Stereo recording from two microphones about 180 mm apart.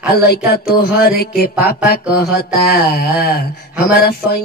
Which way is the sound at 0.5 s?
60° left (ahead or behind).